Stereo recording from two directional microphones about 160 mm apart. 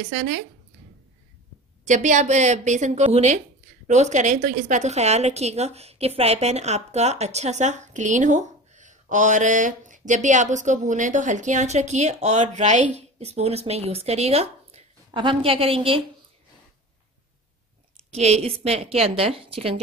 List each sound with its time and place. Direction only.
0.1 s speech: 55° right (ahead or behind)
1.9 s a woman's voice: 50° right (ahead or behind)
18.1 s a woman's voice: 40° right (ahead or behind)